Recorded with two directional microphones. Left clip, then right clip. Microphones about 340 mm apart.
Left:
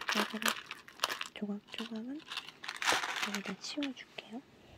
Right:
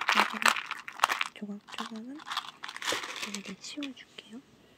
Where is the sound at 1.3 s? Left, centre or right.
Centre.